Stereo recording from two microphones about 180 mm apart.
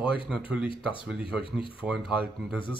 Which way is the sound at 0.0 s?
30° left (ahead or behind).